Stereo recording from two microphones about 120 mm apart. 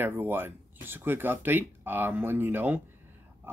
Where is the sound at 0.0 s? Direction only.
15° right (ahead or behind).